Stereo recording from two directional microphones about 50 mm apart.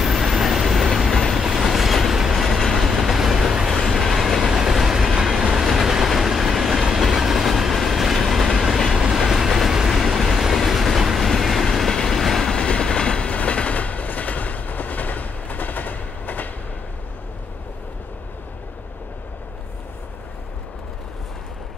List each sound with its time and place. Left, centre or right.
0.0 s train: centre
12.6 s train: centre; by 16.4 s left